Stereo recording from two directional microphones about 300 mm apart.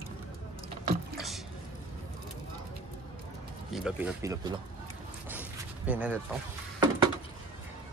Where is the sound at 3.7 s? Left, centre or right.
Centre.